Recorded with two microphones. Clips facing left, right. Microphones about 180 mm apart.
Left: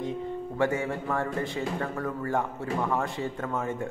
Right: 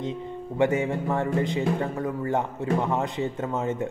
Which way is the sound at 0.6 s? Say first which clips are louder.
Right 5 dB; 20° right (ahead or behind).